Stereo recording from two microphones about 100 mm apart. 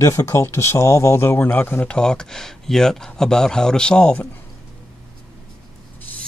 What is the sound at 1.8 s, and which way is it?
Speech, 10° left (ahead or behind).